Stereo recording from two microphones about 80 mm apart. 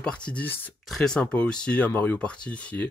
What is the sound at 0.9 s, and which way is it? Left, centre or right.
Speech, centre.